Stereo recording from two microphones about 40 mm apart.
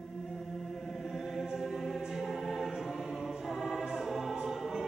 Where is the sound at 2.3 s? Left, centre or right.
Centre.